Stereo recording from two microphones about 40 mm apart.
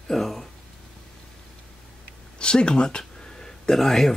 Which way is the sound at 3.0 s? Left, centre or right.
Centre.